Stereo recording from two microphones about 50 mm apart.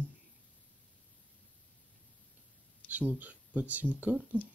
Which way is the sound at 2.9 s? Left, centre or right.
Right.